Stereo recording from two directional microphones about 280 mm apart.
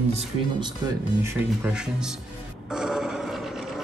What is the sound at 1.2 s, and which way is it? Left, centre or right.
Speech, centre.